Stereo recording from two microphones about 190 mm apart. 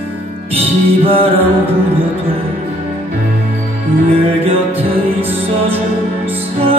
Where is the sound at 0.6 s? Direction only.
30° right (ahead or behind).